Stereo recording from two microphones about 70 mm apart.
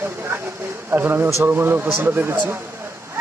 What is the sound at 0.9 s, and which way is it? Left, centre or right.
Speech, right.